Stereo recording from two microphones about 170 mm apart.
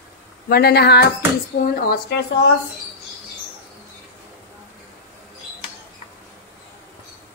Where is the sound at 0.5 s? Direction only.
70° left (ahead or behind).